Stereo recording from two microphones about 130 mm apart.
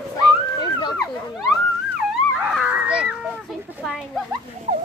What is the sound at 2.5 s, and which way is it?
A child's voice, 10° right (ahead or behind).